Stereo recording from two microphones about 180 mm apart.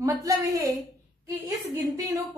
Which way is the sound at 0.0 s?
20° right (ahead or behind).